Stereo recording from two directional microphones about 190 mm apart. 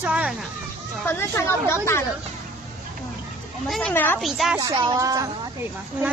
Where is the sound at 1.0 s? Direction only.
10° left (ahead or behind).